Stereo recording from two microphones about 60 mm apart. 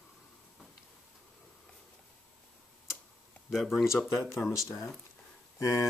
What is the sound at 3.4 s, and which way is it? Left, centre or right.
Speech, centre.